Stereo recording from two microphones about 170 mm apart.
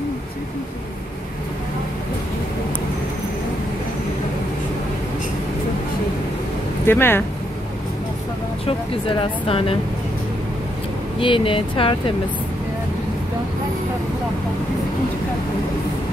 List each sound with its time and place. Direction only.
6.9 s speech: 15° left (ahead or behind)
8.6 s speech: 35° left (ahead or behind)
11.1 s speech: 30° left (ahead or behind)